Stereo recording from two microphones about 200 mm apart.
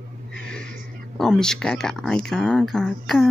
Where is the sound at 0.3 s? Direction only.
5° left (ahead or behind).